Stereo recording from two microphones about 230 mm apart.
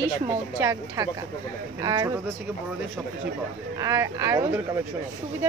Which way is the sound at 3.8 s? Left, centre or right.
Centre.